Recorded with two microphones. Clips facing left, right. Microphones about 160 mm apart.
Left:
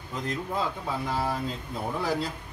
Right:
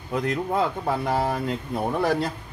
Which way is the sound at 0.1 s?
65° right (ahead or behind).